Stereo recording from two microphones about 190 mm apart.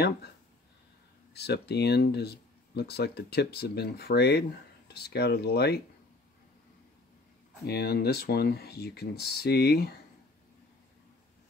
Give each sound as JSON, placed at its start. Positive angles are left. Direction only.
{"t": 1.3, "sound": "speech", "side_deg": 60}
{"t": 7.6, "sound": "speech", "side_deg": 55}